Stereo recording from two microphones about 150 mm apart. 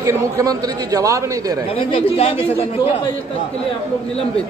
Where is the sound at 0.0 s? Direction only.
25° right (ahead or behind).